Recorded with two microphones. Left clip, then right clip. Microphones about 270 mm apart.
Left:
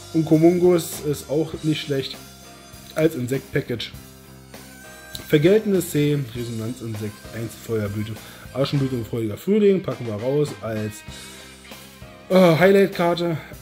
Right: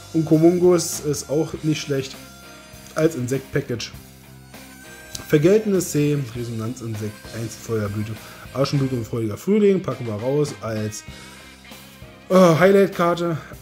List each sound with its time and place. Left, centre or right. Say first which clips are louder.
0.1 s speech: even; centre
5.3 s speech: even; centre
12.3 s speech: right 1 dB; centre